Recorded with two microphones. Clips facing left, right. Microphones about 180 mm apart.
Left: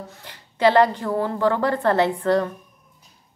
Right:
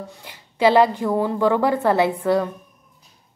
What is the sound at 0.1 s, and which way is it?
A woman's voice, 10° right (ahead or behind).